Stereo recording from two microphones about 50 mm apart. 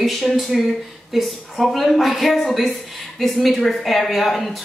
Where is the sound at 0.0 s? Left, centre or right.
Centre.